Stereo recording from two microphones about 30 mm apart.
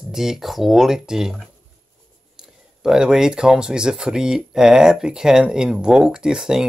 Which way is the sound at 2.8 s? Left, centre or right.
Centre.